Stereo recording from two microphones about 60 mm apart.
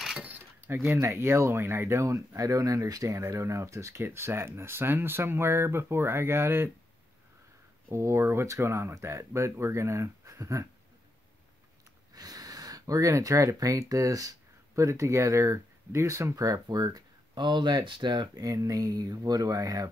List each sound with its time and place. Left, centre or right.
0.6 s speech: right
2.0 s speech: right
4.0 s speech: right
7.9 s speech: right
12.1 s speech: right
14.8 s speech: right
16.3 s speech: right
18.3 s speech: right